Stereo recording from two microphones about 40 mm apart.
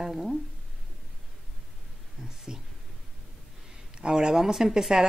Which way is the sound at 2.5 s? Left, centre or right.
Centre.